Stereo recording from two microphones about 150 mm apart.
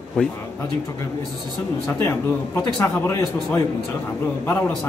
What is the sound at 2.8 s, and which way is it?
Speech, 15° left (ahead or behind).